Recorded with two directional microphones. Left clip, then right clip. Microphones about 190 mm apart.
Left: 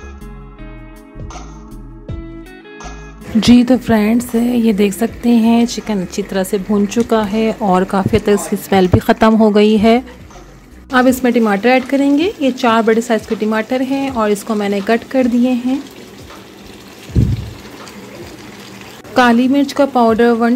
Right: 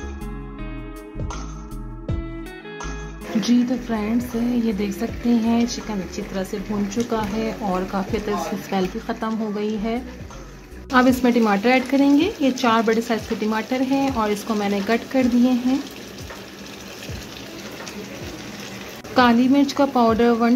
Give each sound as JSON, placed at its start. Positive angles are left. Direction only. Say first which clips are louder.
{"t": 3.3, "sound": "speech", "louder": "left 10 dB", "side_deg": 40}
{"t": 10.9, "sound": "a woman's voice", "louder": "left 5 dB", "side_deg": 25}
{"t": 19.1, "sound": "a woman's voice", "louder": "left 5 dB", "side_deg": 25}